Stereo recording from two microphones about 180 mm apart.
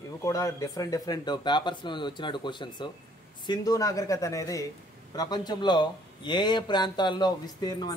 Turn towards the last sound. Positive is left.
turn(degrees=20)  # may be behind; listen again after turning